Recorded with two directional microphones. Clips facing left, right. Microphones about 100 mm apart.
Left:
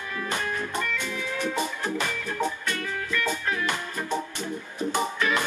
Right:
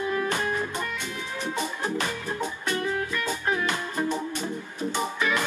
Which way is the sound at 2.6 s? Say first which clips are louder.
Right 3 dB; 20° right (ahead or behind).